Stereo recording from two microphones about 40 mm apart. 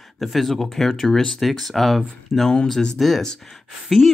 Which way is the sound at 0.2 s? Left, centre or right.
Centre.